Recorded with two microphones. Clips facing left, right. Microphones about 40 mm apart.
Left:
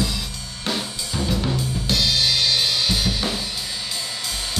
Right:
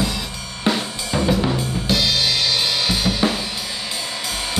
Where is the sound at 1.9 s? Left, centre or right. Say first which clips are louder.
Right 1 dB; centre.